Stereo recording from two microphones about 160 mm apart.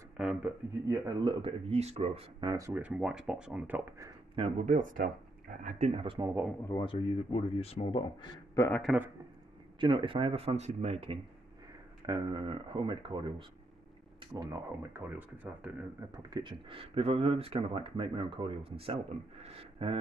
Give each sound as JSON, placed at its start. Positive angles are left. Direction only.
{"t": 0.2, "sound": "speech", "side_deg": -5}
{"t": 0.8, "sound": "speech", "side_deg": -25}
{"t": 2.5, "sound": "speech", "side_deg": -15}
{"t": 4.4, "sound": "speech", "side_deg": -50}
{"t": 6.8, "sound": "speech", "side_deg": 35}
{"t": 8.5, "sound": "speech", "side_deg": 15}
{"t": 9.8, "sound": "speech", "side_deg": -30}
{"t": 16.1, "sound": "speech", "side_deg": -25}